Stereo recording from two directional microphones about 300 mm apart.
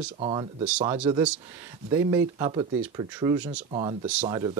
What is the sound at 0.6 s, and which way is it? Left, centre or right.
Speech, centre.